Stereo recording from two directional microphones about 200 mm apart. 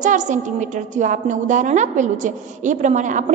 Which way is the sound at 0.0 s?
40° right (ahead or behind).